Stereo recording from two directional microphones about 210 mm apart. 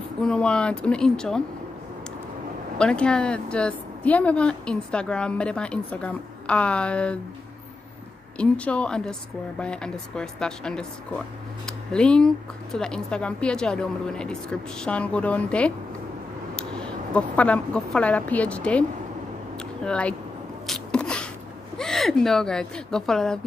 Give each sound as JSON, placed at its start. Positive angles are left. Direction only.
{"t": 0.2, "sound": "a woman's voice", "side_deg": 5}
{"t": 2.8, "sound": "a woman's voice", "side_deg": 5}
{"t": 8.4, "sound": "a woman's voice", "side_deg": 5}
{"t": 20.6, "sound": "sneeze", "side_deg": 5}
{"t": 21.7, "sound": "speech", "side_deg": 0}